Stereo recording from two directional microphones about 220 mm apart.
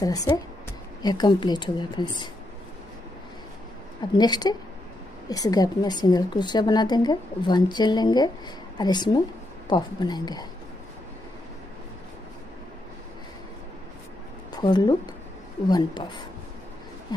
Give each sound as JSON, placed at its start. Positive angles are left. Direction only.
{"t": 0.0, "sound": "a woman's voice", "side_deg": 15}
{"t": 4.2, "sound": "a woman's voice", "side_deg": 20}
{"t": 14.5, "sound": "a woman's voice", "side_deg": 20}